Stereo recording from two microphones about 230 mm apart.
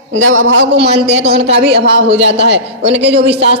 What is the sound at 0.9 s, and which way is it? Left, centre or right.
A woman's voice, right.